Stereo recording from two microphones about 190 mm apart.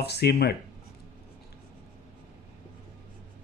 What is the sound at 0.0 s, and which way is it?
Speech, 60° left (ahead or behind).